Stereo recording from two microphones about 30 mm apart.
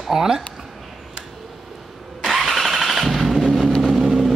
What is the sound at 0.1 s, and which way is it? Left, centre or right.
Speech, centre.